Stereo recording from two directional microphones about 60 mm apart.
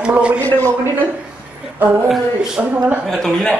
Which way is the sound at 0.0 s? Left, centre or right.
Centre.